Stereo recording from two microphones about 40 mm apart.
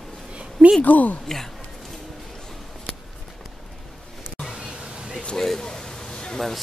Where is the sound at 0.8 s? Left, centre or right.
Left.